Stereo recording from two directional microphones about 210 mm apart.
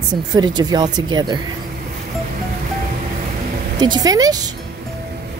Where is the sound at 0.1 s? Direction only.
20° right (ahead or behind).